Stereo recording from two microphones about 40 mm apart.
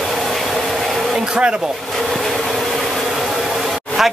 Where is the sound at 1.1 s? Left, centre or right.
Right.